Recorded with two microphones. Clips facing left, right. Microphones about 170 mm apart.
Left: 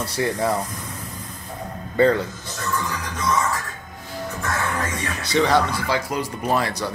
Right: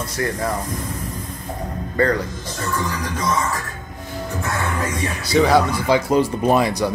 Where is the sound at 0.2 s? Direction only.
20° left (ahead or behind).